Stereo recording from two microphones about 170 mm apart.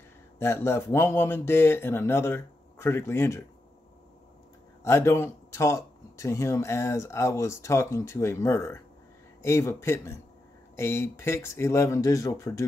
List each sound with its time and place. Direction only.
0.4 s speech: 15° left (ahead or behind)
4.8 s speech: 15° left (ahead or behind)